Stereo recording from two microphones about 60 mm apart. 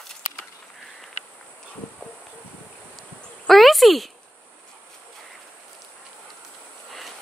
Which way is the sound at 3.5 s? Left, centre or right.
Centre.